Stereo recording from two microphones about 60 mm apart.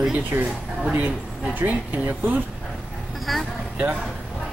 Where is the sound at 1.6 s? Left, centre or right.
Right.